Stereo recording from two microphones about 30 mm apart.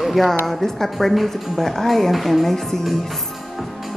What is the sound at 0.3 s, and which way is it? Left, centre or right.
A woman's voice, centre.